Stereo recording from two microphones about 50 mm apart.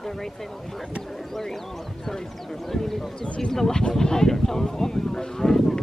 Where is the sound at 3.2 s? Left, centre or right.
Centre.